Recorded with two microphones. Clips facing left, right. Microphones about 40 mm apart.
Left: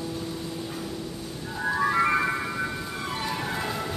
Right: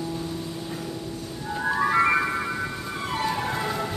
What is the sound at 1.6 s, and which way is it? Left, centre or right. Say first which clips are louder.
Music: right 2 dB; centre.